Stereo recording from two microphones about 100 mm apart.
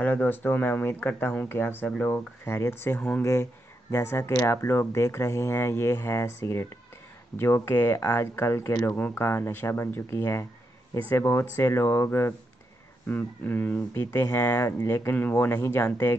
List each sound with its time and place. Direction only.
0.0 s speech: 20° left (ahead or behind)